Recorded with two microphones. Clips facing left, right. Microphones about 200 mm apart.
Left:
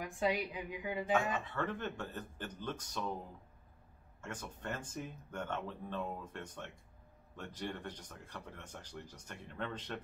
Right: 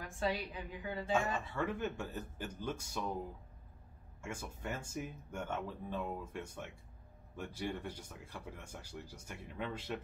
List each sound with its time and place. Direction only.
0.0 s a woman's voice: 15° left (ahead or behind)
1.1 s speech: 10° right (ahead or behind)
4.2 s speech: 10° right (ahead or behind)